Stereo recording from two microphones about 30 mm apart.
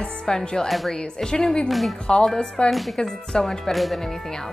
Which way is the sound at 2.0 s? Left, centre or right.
Left.